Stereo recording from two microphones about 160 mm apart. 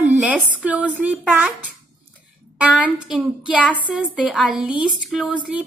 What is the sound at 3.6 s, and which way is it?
Speech, 10° left (ahead or behind).